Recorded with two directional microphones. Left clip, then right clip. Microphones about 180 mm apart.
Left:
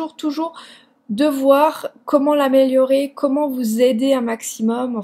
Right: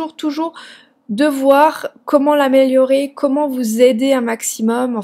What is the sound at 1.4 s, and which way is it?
A woman's voice, 30° right (ahead or behind).